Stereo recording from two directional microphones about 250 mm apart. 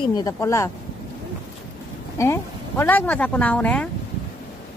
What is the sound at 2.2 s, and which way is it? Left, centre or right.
Speech, centre.